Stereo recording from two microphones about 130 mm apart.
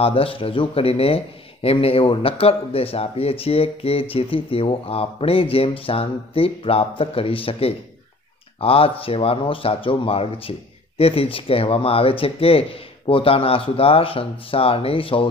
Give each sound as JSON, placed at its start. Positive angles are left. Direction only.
{"t": 0.0, "sound": "speech", "side_deg": 45}